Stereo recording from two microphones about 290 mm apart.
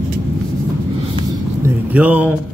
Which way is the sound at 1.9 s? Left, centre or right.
Centre.